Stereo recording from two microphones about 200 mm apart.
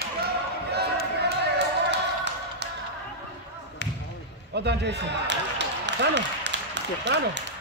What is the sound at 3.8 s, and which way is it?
Basketball bounce, 60° left (ahead or behind).